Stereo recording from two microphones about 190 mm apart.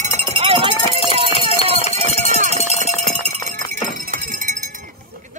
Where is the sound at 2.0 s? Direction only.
35° right (ahead or behind).